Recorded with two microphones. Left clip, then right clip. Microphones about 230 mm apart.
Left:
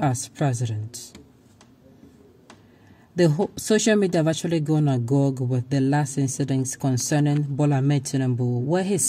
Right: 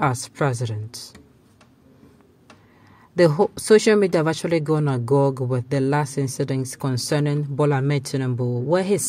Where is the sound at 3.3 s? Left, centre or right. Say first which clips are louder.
Right 5 dB; right.